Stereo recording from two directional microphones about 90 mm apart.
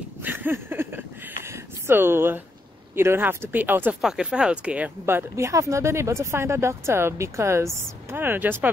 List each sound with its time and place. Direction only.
0.2 s a sound: 20° right (ahead or behind)
3.0 s speech: 25° right (ahead or behind)
4.0 s speech: 10° right (ahead or behind)
5.3 s speech: 40° right (ahead or behind)